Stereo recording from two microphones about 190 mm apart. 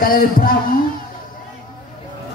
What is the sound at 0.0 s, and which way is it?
Speech, 50° left (ahead or behind).